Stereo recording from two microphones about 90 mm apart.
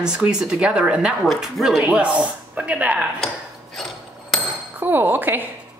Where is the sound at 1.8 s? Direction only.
15° right (ahead or behind).